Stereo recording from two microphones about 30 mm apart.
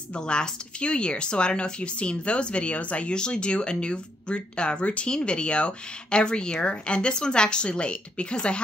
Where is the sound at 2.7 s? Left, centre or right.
Left.